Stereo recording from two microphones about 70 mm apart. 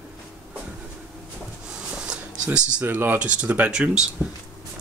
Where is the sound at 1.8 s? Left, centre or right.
Centre.